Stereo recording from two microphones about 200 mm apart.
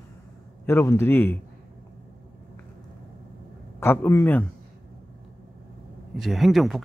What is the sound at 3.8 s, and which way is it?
Speech, 10° left (ahead or behind).